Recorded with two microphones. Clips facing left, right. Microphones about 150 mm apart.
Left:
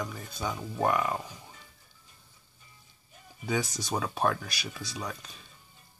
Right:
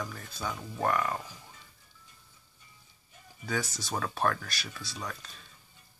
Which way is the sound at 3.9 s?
10° left (ahead or behind).